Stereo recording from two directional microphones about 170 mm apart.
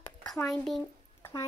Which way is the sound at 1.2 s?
15° left (ahead or behind).